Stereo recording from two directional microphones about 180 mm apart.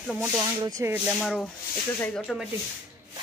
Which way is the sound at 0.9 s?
5° right (ahead or behind).